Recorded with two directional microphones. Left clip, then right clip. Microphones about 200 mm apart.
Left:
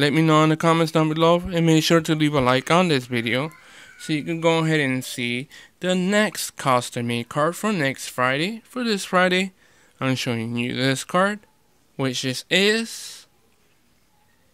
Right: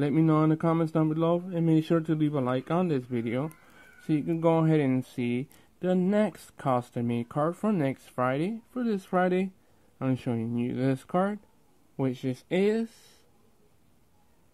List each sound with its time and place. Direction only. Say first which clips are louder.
0.0 s speech: left 7 dB; 20° left (ahead or behind)
4.1 s speech: left 4 dB; 5° left (ahead or behind)
5.8 s speech: left 6 dB; 15° left (ahead or behind)